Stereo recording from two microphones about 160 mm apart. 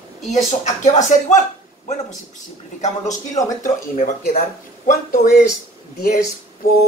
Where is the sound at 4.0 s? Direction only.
55° left (ahead or behind).